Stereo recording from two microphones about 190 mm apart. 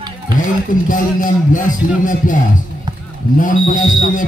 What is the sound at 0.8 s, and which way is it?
Speech, 45° left (ahead or behind).